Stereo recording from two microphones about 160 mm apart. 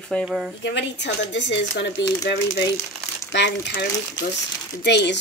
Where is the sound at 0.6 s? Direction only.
90° left.